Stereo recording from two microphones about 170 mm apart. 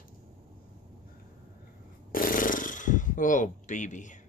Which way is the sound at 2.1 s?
55° left (ahead or behind).